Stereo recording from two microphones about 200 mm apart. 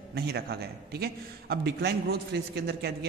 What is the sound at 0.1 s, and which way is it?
A man's voice, 55° right (ahead or behind).